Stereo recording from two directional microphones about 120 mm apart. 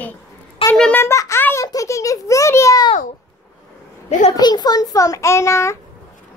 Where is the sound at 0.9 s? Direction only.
25° left (ahead or behind).